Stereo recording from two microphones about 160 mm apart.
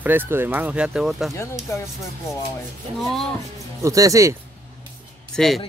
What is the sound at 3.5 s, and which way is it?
Speech, 20° right (ahead or behind).